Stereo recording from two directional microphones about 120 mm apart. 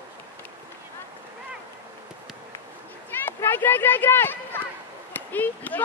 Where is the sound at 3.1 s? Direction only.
20° left (ahead or behind).